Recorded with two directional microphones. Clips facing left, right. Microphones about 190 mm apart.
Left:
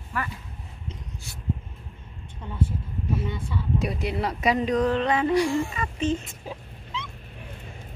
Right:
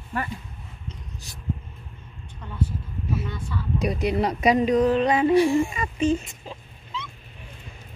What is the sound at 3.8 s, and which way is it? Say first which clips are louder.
Speech: right 4 dB; 15° right (ahead or behind).